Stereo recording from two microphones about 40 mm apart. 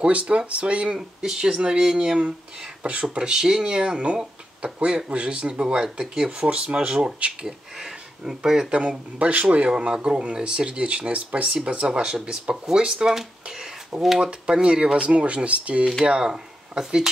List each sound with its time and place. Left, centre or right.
0.0 s speech: right
0.9 s speech: centre
2.8 s speech: right
3.2 s speech: centre
4.2 s a sound: centre
4.7 s speech: right
6.4 s speech: right
8.2 s speech: centre
8.6 s speech: right
11.8 s speech: right
14.2 s speech: right
16.1 s speech: centre